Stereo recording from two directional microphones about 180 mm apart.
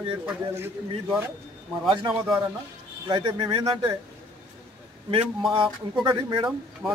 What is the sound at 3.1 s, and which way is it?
Speech, 25° right (ahead or behind).